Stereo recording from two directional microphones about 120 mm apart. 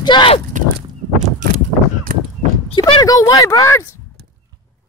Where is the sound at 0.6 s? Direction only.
90° right.